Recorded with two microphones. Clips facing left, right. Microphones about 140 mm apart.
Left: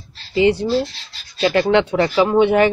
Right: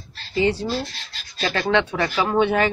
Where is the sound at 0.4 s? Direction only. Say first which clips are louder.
Left 6 dB; 15° left (ahead or behind).